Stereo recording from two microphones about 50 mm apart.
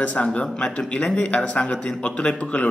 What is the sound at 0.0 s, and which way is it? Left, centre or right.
Speech, left.